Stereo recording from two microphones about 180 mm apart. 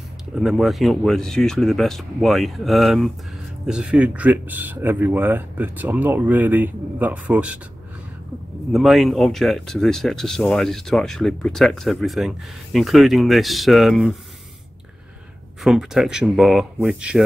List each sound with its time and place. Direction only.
0.4 s speech: centre (ahead or behind)
8.7 s speech: centre (ahead or behind)
15.6 s speech: centre (ahead or behind)